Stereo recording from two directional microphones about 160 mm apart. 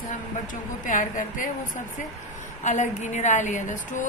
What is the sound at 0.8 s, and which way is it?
Speech, 55° left (ahead or behind).